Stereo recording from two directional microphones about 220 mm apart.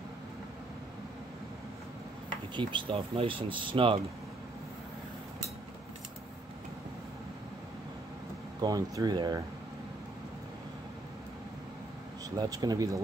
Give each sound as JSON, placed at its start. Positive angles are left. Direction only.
{"t": 2.5, "sound": "speech", "side_deg": -25}
{"t": 8.5, "sound": "speech", "side_deg": -15}
{"t": 12.4, "sound": "speech", "side_deg": -15}